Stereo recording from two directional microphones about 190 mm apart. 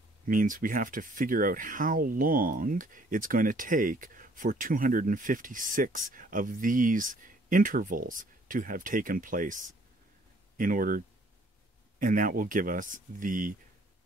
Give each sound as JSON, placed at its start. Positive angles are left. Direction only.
{"t": 0.3, "sound": "speech", "side_deg": -45}
{"t": 12.0, "sound": "speech", "side_deg": -45}